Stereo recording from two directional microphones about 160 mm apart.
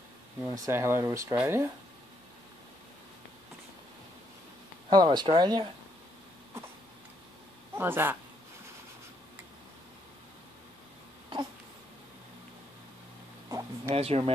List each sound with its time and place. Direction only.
0.4 s speech: 15° right (ahead or behind)
4.8 s speech: 30° right (ahead or behind)
7.7 s speech: 15° right (ahead or behind)
13.5 s a sound: 20° right (ahead or behind)
13.9 s speech: 40° right (ahead or behind)